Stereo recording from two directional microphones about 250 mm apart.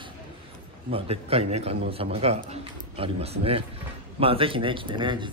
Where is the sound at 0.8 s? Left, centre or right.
Right.